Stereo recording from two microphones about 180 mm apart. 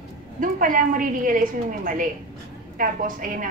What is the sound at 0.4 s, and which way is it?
A woman's voice, 50° right (ahead or behind).